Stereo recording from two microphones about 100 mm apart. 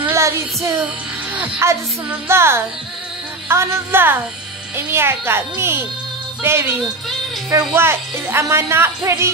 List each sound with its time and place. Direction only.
0.1 s child singing: 30° right (ahead or behind)
1.3 s speech: 25° right (ahead or behind)